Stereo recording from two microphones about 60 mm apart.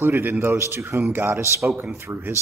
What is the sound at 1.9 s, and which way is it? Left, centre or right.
Speech, right.